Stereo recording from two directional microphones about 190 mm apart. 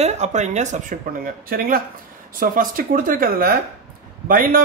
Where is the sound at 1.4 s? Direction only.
50° right (ahead or behind).